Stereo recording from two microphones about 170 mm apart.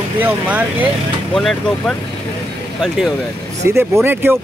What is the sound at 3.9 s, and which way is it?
Speech, 15° right (ahead or behind).